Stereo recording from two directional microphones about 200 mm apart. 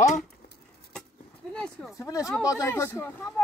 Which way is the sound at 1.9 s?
15° left (ahead or behind).